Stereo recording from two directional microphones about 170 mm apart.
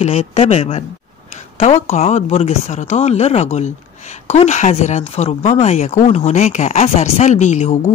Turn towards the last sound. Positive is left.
turn(degrees=45)  # may be behind; listen again after turning